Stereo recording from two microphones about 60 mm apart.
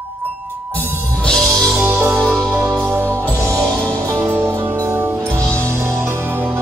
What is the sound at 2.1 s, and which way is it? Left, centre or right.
Music, centre.